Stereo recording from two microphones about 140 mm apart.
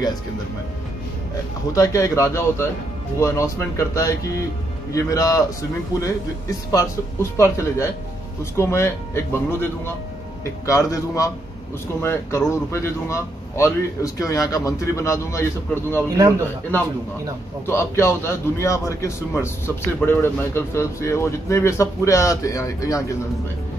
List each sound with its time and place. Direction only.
1.7 s a man's voice: 25° left (ahead or behind)
6.7 s a man's voice: 20° left (ahead or behind)
16.2 s a man's voice: 20° right (ahead or behind)
17.6 s a man's voice: 20° left (ahead or behind)